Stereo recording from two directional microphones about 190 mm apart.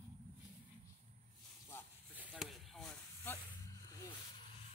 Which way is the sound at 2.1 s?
Centre (ahead or behind).